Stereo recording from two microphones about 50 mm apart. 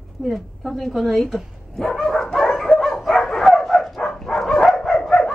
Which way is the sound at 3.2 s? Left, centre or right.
Centre.